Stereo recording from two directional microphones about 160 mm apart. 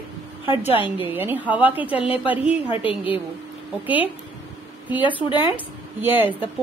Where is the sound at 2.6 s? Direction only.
35° left (ahead or behind).